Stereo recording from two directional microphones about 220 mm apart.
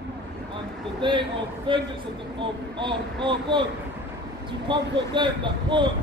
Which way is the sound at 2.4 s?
20° right (ahead or behind).